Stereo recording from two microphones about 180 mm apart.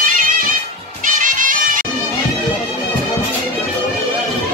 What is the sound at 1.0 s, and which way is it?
Music, 45° right (ahead or behind).